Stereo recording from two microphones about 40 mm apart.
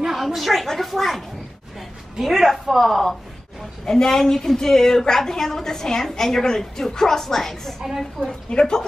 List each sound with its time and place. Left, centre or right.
0.0 s a sound: centre
2.2 s a woman's voice: centre
8.5 s a woman's voice: left